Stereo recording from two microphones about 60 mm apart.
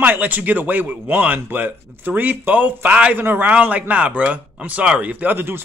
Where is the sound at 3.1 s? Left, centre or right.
Right.